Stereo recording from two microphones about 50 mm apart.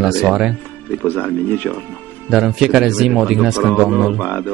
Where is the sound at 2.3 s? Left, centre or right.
Centre.